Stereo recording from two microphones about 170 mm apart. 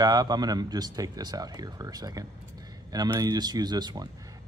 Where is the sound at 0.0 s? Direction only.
25° right (ahead or behind).